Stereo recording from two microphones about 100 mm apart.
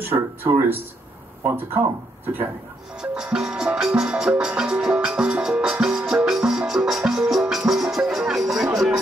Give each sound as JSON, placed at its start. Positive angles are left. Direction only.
{"t": 0.0, "sound": "speech", "side_deg": -20}
{"t": 3.0, "sound": "music", "side_deg": -5}